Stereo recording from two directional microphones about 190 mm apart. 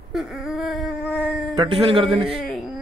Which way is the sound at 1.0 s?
10° left (ahead or behind).